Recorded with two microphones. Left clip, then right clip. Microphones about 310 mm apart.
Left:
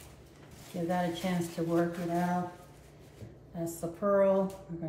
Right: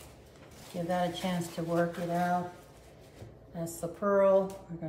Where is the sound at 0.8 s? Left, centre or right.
Centre.